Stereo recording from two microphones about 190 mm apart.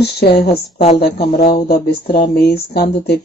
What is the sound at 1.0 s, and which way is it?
Speech, 50° left (ahead or behind).